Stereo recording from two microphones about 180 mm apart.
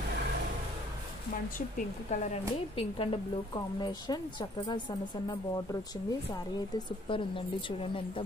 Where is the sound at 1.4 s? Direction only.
50° left (ahead or behind).